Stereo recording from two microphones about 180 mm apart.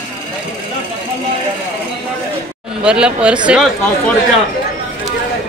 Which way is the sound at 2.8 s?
5° right (ahead or behind).